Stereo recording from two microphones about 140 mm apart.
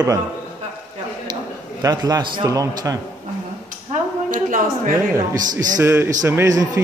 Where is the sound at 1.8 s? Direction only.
25° right (ahead or behind).